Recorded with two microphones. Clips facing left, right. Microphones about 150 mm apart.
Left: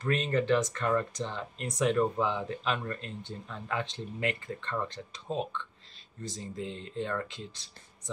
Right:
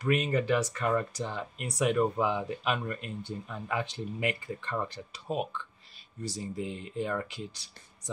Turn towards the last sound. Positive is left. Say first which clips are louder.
# right 1 dB
turn(degrees=-10)  # may be behind; listen again after turning